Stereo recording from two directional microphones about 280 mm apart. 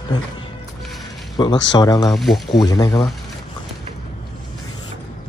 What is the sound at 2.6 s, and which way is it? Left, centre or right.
Speech, centre.